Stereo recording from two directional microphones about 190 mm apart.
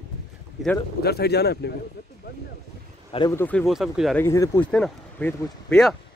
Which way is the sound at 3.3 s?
10° left (ahead or behind).